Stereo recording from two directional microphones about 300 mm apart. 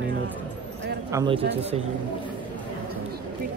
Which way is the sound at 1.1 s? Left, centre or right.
Centre.